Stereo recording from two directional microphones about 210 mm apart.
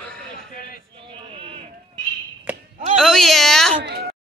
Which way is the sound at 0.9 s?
25° right (ahead or behind).